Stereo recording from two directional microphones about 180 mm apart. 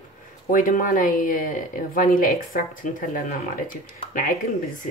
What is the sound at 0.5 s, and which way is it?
Speech, 50° left (ahead or behind).